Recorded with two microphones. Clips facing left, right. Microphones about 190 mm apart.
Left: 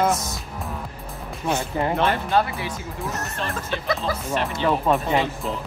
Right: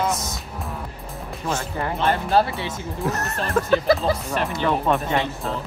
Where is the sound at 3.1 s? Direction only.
65° right (ahead or behind).